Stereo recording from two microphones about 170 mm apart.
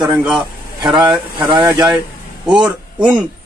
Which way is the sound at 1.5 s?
20° right (ahead or behind).